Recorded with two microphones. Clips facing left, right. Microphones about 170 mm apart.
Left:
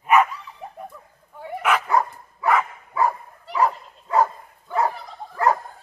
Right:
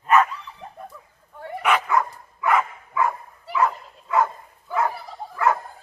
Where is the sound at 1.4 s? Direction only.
5° left (ahead or behind).